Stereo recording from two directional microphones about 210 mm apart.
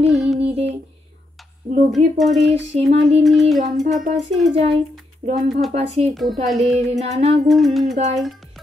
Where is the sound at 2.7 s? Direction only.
30° right (ahead or behind).